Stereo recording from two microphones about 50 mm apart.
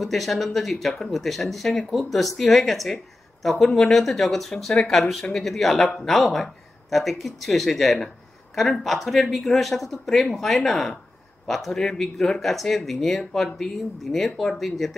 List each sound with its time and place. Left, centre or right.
0.0 s a man's voice: centre